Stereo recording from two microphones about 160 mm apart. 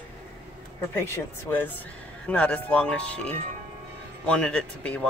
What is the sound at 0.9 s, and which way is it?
Speech, 15° left (ahead or behind).